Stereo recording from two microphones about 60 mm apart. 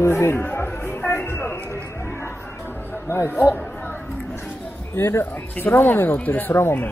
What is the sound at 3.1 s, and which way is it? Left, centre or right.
Speech, left.